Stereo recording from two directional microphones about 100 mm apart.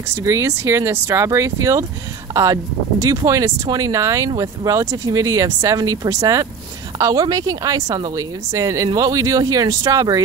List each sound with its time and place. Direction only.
0.1 s a woman's voice: 30° right (ahead or behind)